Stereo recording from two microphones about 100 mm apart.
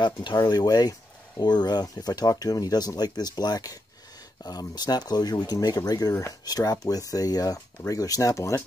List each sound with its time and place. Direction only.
0.0 s speech: 50° left (ahead or behind)
0.4 s speech: 40° left (ahead or behind)